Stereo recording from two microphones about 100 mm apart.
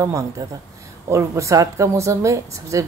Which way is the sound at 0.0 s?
35° right (ahead or behind).